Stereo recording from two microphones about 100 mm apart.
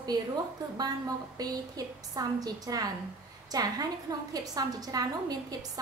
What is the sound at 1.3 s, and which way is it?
A woman's voice, 40° right (ahead or behind).